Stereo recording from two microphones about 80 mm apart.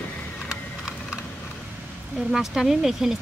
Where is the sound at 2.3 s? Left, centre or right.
Centre.